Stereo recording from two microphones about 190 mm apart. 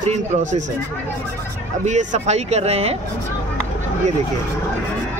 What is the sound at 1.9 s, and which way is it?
Speech, 35° right (ahead or behind).